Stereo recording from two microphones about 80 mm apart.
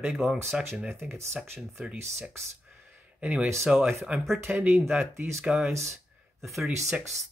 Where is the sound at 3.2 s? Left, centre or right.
Centre.